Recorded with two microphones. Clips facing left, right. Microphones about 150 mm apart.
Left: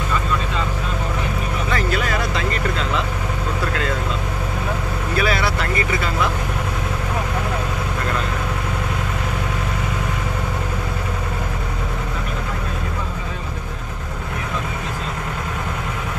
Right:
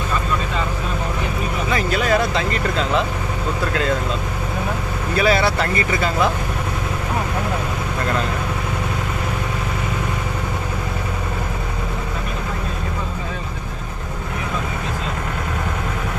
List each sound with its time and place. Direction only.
5.2 s vehicle: 30° right (ahead or behind)